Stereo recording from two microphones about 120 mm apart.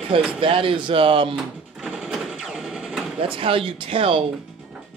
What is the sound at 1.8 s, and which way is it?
Engine, 5° right (ahead or behind).